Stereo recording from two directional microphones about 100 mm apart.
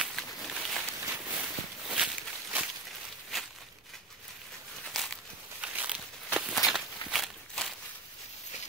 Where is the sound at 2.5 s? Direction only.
15° right (ahead or behind).